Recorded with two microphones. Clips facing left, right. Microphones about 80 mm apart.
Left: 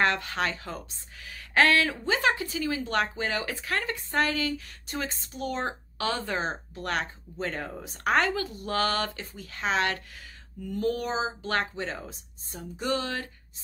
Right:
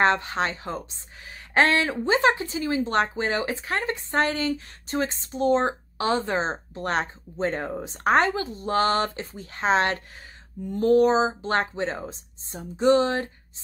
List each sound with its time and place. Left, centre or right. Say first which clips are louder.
0.0 s speech: right 4 dB; right